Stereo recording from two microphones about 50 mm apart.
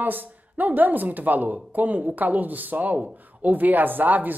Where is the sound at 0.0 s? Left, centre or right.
Right.